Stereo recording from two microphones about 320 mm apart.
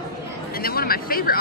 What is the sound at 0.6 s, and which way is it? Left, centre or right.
Speech, left.